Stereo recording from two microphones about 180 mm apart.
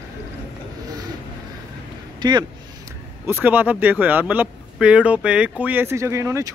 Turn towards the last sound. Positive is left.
turn(degrees=-15)  # may be behind; listen again after turning